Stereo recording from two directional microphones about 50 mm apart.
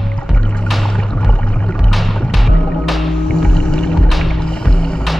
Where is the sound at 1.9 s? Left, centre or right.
Centre.